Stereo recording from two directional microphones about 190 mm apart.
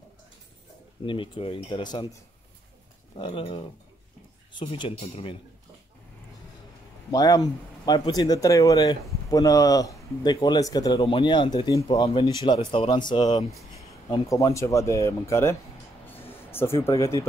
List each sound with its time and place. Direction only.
1.0 s speech: 25° left (ahead or behind)
3.2 s speech: 25° left (ahead or behind)
7.1 s speech: 20° left (ahead or behind)
16.1 s a sound: 10° left (ahead or behind)
16.9 s speech: 15° left (ahead or behind)